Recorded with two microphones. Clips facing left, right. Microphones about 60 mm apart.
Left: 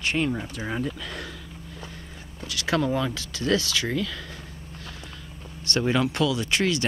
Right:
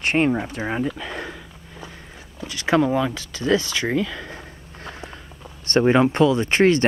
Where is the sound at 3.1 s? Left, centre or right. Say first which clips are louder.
Right 4 dB; right.